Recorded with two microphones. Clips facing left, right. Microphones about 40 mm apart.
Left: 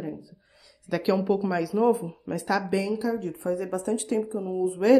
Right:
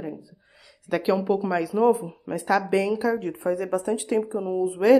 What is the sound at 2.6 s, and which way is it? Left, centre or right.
Speech, right.